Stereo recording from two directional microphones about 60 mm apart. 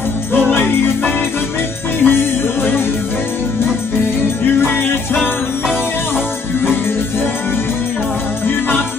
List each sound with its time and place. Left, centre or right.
0.5 s music: left
4.6 s music: left
8.5 s music: left